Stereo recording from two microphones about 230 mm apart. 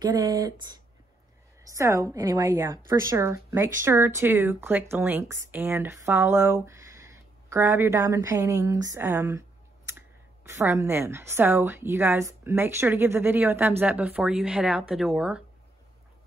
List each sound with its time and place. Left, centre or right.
0.0 s a woman's voice: centre